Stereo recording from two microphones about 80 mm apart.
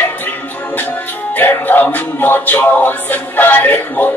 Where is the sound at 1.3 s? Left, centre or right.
Left.